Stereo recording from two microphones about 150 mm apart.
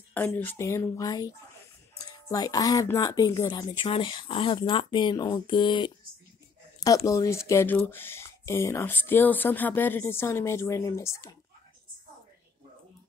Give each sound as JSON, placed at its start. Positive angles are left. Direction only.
{"t": 0.1, "sound": "speech", "side_deg": 10}
{"t": 7.1, "sound": "speech", "side_deg": 20}